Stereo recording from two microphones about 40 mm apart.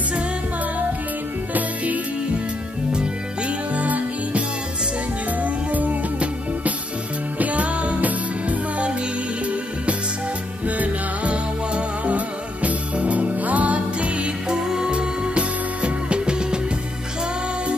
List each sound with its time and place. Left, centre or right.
1.5 s music: right
2.9 s music: right
3.7 s music: right
12.6 s music: right
14.5 s music: centre
14.9 s music: right